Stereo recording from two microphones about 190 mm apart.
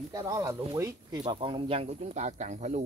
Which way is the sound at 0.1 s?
15° right (ahead or behind).